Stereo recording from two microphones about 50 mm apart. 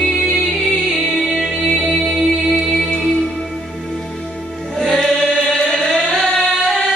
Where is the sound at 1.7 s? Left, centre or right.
Centre.